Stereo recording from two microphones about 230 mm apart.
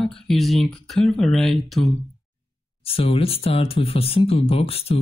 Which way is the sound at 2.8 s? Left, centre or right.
Left.